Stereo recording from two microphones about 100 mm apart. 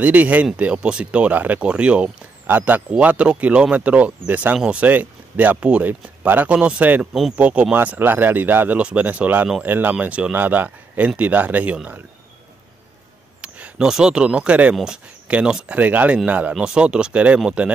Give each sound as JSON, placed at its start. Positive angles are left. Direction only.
{"t": 0.0, "sound": "speech", "side_deg": -15}
{"t": 13.4, "sound": "speech", "side_deg": -10}